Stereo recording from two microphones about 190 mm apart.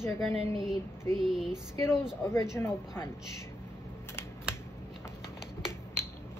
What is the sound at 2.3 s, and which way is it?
Speech, 15° left (ahead or behind).